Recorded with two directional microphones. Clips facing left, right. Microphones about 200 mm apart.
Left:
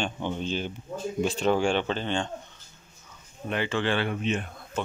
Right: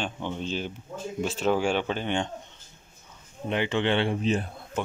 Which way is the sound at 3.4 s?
20° right (ahead or behind).